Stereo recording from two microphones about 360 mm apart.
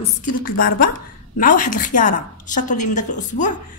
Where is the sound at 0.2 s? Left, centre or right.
Left.